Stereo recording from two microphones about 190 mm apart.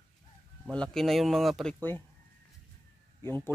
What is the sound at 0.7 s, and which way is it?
Speech, 5° left (ahead or behind).